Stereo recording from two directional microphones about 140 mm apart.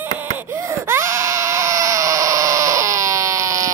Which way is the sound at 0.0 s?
15° right (ahead or behind).